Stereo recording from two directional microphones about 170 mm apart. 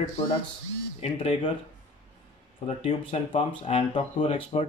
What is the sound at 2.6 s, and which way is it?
Speech, 35° left (ahead or behind).